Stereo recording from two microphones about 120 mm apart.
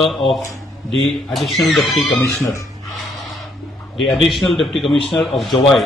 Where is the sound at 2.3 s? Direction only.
20° left (ahead or behind).